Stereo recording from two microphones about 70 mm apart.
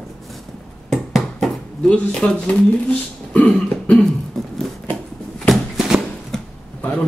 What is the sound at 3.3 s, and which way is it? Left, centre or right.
Speech, centre.